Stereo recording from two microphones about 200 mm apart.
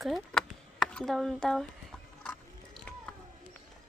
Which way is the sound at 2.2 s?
5° left (ahead or behind).